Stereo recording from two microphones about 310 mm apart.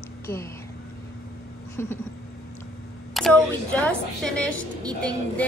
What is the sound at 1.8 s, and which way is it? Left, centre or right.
Vehicle, centre.